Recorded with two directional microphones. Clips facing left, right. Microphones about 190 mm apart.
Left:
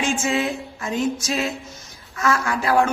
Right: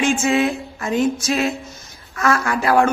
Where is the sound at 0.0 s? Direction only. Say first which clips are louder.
Right 5 dB; 60° right (ahead or behind).